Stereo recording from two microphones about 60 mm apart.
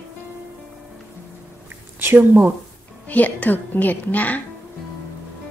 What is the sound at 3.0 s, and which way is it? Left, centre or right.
A woman's voice, left.